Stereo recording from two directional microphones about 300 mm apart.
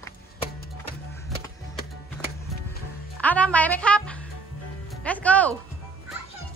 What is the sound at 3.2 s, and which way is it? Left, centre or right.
Speech, centre.